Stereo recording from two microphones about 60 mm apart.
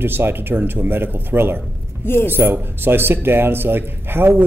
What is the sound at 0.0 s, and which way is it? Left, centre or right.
Speech, right.